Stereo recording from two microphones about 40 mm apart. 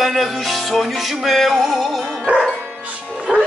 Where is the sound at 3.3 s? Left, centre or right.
Centre.